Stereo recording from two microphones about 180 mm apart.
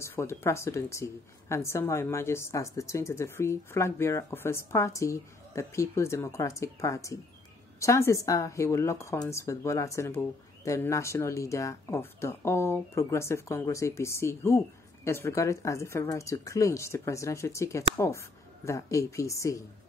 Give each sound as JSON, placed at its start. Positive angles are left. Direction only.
{"t": 0.0, "sound": "a woman's voice", "side_deg": 15}